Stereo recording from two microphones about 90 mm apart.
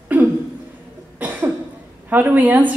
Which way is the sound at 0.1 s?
15° right (ahead or behind).